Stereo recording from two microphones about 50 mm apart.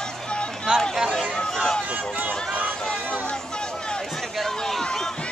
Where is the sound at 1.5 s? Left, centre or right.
Centre.